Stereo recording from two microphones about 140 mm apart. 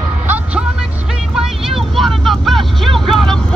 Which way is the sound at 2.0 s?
Centre (ahead or behind).